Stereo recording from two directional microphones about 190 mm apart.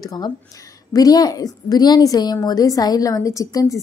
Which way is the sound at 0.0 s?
20° left (ahead or behind).